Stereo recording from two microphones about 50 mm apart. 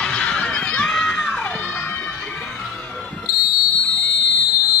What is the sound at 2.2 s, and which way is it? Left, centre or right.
Music, left.